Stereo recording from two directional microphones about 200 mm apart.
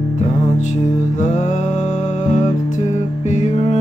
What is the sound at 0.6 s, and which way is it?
Music, 35° left (ahead or behind).